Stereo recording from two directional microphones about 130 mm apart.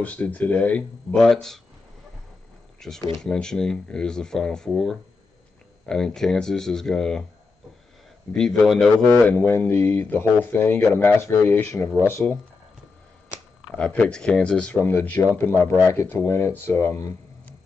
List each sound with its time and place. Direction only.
0.0 s speech: 10° left (ahead or behind)
2.8 s speech: 5° left (ahead or behind)
8.3 s speech: 5° left (ahead or behind)
9.2 s speech: 15° left (ahead or behind)
13.3 s a sound: 5° right (ahead or behind)
13.7 s speech: 5° left (ahead or behind)